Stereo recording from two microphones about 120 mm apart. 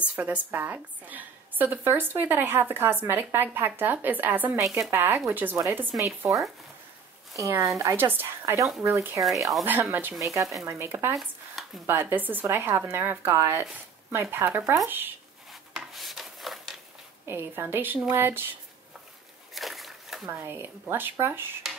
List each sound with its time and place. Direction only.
0.0 s a woman's voice: 10° right (ahead or behind)
5.9 s a woman's voice: 25° right (ahead or behind)
15.7 s a sound: centre (ahead or behind)
17.3 s a woman's voice: 20° right (ahead or behind)
19.5 s a sound: centre (ahead or behind)
20.2 s a woman's voice: 20° right (ahead or behind)